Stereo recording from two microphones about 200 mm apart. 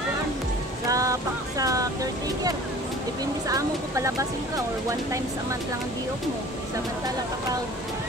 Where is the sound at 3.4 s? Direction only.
15° right (ahead or behind).